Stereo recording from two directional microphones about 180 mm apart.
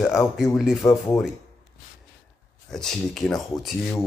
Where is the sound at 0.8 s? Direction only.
15° left (ahead or behind).